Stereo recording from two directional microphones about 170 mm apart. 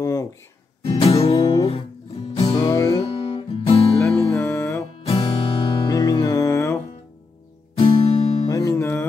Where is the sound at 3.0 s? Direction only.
35° left (ahead or behind).